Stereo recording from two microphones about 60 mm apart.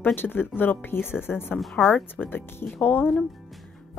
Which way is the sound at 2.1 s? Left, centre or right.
Left.